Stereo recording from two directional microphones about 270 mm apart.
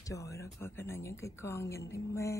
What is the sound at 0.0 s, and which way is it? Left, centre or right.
Speech, centre.